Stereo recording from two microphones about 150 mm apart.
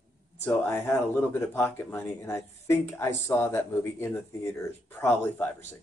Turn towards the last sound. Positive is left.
turn(degrees=15)  # may be behind; listen again after turning